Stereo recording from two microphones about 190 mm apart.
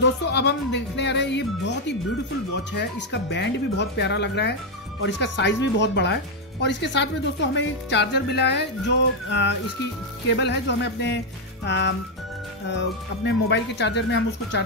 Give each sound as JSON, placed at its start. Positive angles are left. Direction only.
{"t": 0.0, "sound": "speech", "side_deg": 65}